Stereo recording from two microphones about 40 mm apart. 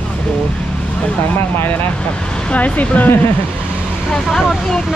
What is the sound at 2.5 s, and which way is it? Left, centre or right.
Speech, left.